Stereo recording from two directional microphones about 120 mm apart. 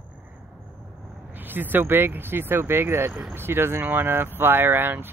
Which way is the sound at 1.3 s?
15° right (ahead or behind).